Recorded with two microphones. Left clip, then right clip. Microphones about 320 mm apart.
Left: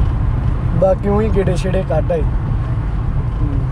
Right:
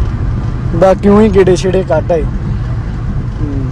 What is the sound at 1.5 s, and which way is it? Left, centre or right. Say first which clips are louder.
Speech: right 8 dB; right.